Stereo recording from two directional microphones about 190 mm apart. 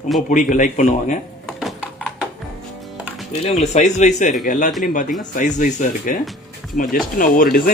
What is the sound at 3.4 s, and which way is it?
Speech, 35° left (ahead or behind).